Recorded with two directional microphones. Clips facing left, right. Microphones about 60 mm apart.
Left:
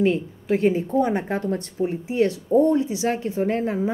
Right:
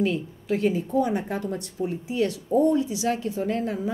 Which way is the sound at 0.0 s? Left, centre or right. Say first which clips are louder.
Left 4 dB; left.